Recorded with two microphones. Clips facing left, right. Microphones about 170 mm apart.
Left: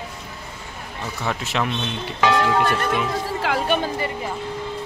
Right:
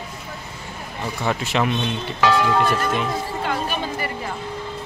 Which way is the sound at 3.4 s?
85° left.